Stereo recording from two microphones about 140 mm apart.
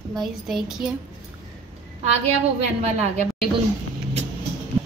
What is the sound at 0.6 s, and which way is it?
Speech, 5° right (ahead or behind).